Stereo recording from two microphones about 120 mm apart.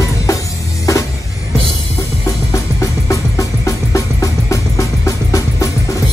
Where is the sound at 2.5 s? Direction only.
25° left (ahead or behind).